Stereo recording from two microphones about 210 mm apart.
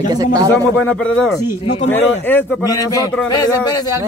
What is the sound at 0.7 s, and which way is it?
A man's voice, 5° left (ahead or behind).